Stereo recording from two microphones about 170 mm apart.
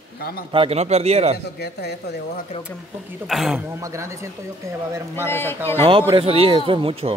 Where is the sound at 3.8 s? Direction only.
20° right (ahead or behind).